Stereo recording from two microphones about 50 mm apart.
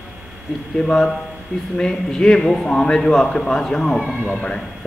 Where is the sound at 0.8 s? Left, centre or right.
Centre.